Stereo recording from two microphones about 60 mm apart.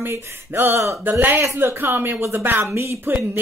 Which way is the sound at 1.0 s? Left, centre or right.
Right.